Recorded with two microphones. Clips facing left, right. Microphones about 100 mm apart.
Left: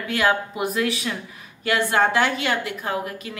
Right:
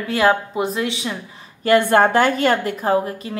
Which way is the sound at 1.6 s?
45° right (ahead or behind).